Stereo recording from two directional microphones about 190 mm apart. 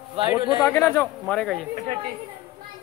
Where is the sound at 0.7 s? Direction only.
10° left (ahead or behind).